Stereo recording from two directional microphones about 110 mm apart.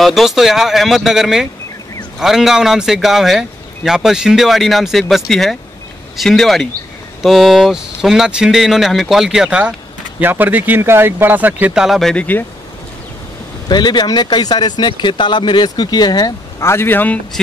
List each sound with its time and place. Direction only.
0.0 s speech: centre (ahead or behind); by 11.5 s 15° right (ahead or behind)
11.6 s speech: 5° right (ahead or behind); by 12.4 s 15° left (ahead or behind)
13.7 s speech: 40° left (ahead or behind); by 17.2 s 15° left (ahead or behind)